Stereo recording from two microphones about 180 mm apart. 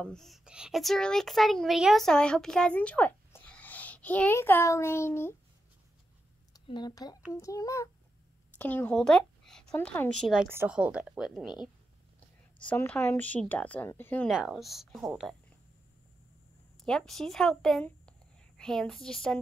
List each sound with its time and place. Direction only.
0.0 s a woman's voice: centre (ahead or behind)
6.5 s a child's voice: 20° left (ahead or behind)
14.3 s a woman's voice: 5° right (ahead or behind)
16.8 s a woman's voice: 5° left (ahead or behind)